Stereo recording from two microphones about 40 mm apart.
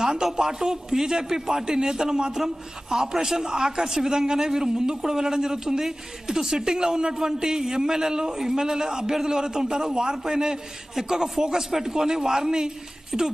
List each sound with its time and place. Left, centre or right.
0.0 s a woman's voice: centre